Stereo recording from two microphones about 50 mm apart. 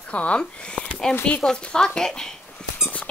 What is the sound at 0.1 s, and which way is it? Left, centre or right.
Speech, left.